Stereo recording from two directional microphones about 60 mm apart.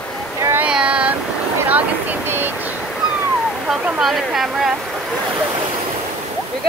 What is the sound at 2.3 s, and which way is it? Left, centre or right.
Speech, right.